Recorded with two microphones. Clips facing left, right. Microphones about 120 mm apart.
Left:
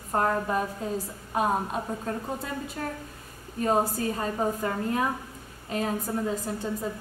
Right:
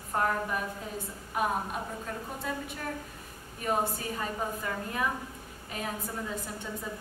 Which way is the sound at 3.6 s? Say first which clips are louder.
Left 5 dB; 35° left (ahead or behind).